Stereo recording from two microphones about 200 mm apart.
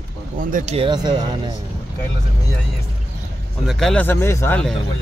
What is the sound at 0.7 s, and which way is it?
Speech, 25° right (ahead or behind).